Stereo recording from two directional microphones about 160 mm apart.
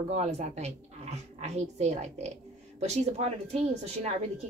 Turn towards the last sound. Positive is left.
turn(degrees=-40)  # may be behind; listen again after turning